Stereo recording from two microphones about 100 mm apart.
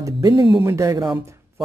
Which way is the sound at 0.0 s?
35° right (ahead or behind).